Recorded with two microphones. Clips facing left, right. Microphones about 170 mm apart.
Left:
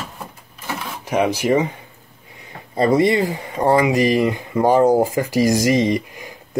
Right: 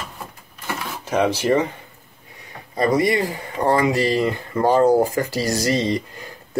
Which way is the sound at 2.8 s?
25° left (ahead or behind).